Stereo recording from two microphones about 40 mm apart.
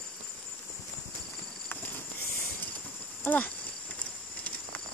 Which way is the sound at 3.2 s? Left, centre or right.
Left.